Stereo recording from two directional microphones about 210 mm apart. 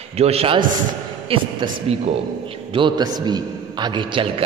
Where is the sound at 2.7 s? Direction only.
20° right (ahead or behind).